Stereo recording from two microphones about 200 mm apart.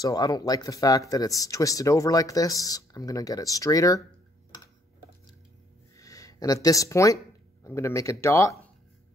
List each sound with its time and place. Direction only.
0.0 s speech: 20° left (ahead or behind)
5.9 s a sound: 15° left (ahead or behind)
7.6 s speech: 15° left (ahead or behind)